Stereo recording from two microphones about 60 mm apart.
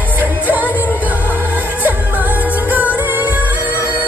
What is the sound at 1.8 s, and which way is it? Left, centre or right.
Music, right.